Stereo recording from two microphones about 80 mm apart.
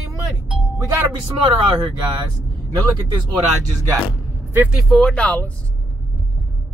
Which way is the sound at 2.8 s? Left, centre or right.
Right.